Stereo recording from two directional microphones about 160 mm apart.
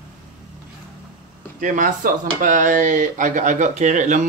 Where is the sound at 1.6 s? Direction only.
55° right (ahead or behind).